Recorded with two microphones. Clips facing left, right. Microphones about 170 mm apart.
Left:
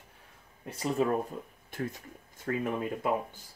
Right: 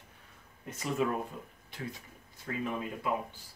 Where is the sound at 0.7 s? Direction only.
35° left (ahead or behind).